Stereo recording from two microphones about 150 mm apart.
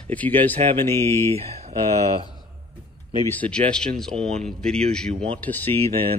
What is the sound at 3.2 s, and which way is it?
Speech, 10° left (ahead or behind).